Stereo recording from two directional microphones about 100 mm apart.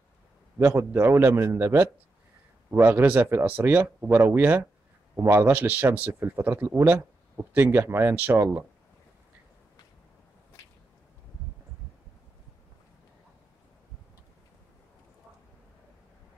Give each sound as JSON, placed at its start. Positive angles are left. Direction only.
{"t": 0.6, "sound": "speech", "side_deg": -20}